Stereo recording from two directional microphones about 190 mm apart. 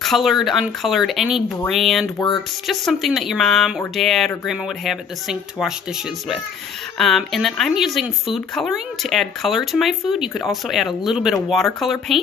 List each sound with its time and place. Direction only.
0.0 s speech: centre (ahead or behind)
2.1 s speech: 25° left (ahead or behind)
2.6 s speech: centre (ahead or behind)